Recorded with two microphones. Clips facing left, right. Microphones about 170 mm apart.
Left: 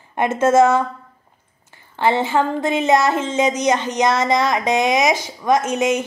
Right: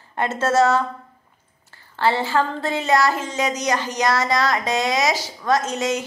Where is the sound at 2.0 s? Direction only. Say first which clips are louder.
Left 3 dB; 20° left (ahead or behind).